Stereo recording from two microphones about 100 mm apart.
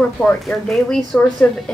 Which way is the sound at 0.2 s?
5° left (ahead or behind).